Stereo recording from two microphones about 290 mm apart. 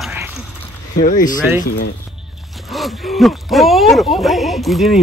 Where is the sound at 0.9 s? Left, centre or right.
Left.